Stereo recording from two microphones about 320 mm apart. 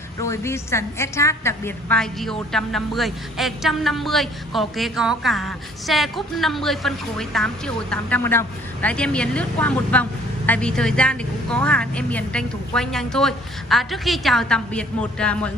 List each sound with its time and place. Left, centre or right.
0.2 s a woman's voice: centre